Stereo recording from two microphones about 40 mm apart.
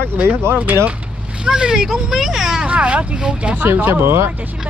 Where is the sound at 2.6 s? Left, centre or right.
Right.